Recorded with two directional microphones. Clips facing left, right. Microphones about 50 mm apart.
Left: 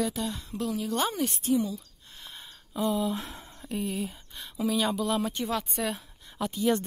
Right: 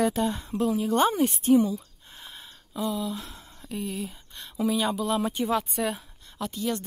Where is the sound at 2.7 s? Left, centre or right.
Left.